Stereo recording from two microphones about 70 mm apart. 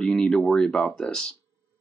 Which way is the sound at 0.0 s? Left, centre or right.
Centre.